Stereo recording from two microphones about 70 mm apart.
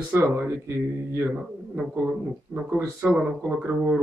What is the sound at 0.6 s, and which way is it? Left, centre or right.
Speech, right.